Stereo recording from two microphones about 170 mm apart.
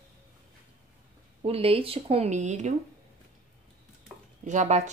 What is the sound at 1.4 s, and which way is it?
Speech, 35° right (ahead or behind).